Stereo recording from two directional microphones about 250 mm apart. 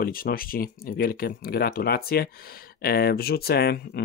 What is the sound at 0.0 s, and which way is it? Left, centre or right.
Speech, left.